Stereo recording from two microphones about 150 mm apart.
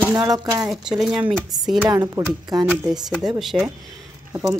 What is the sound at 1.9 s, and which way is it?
Speech, 25° right (ahead or behind).